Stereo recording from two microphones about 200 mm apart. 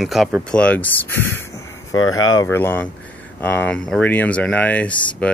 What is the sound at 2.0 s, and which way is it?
Speech, 90° left.